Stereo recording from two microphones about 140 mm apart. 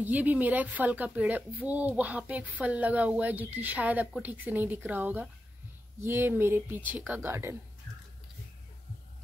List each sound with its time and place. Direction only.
0.0 s speech: 10° right (ahead or behind)